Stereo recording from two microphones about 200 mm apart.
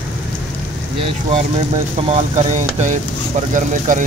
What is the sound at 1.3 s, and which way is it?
Speech, 30° right (ahead or behind).